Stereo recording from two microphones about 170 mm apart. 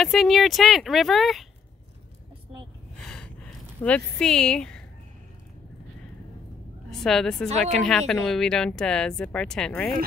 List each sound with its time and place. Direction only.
0.0 s a woman's voice: centre (ahead or behind)
3.0 s a sound: 5° left (ahead or behind)
3.8 s a woman's voice: 5° left (ahead or behind)
6.9 s speech: centre (ahead or behind)
7.4 s speech: 40° right (ahead or behind)
7.7 s a woman's voice: 5° left (ahead or behind)